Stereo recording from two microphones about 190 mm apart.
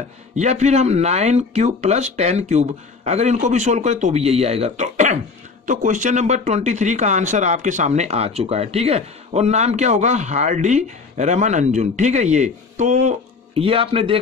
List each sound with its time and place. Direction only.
0.4 s a man's voice: 35° right (ahead or behind)